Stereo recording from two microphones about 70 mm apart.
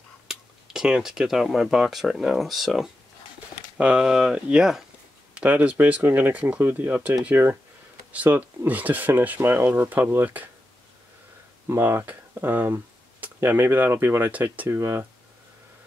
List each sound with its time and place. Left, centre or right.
0.3 s speech: centre
3.7 s speech: centre
5.3 s speech: right
11.7 s speech: right
14.3 s speech: right
14.7 s speech: right